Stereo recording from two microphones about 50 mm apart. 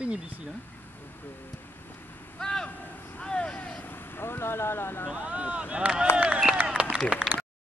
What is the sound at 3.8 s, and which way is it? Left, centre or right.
Speech, left.